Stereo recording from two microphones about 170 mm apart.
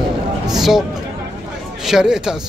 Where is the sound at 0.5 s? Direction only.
Centre (ahead or behind).